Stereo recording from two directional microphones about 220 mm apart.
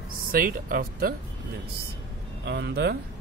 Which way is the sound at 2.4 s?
50° right (ahead or behind).